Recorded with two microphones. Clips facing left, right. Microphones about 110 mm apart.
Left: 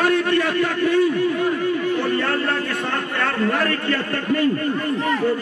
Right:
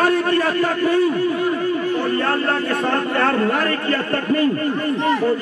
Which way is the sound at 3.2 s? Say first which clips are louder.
Right 1 dB; 35° right (ahead or behind).